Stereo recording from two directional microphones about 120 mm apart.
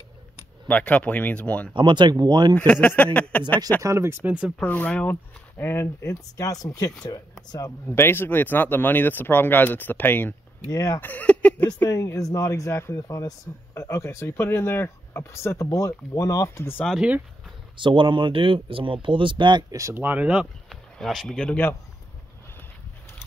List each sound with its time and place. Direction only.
0.7 s speech: 10° left (ahead or behind)
1.8 s speech: 40° right (ahead or behind)
2.5 s speech: 10° left (ahead or behind)
3.8 s speech: 25° right (ahead or behind)
4.6 s speech: 15° left (ahead or behind)
10.7 s speech: 30° left (ahead or behind)
11.0 s speech: 15° left (ahead or behind)
11.9 s speech: 30° left (ahead or behind)
17.7 s speech: 45° right (ahead or behind)
19.8 s speech: 20° right (ahead or behind)
20.7 s speech: centre (ahead or behind)